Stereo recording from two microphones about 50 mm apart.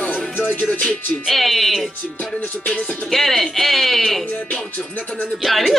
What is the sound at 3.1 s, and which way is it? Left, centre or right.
Speech, centre.